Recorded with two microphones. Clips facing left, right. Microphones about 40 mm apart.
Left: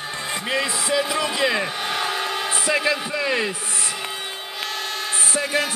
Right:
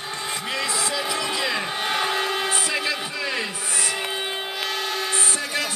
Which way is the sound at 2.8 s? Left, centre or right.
Centre.